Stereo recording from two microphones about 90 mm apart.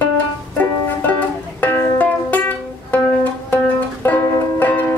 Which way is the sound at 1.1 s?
20° left (ahead or behind).